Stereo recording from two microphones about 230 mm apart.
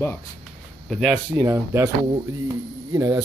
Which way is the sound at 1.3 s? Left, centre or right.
Centre.